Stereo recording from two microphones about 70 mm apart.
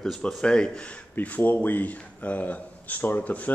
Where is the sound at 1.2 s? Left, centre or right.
Left.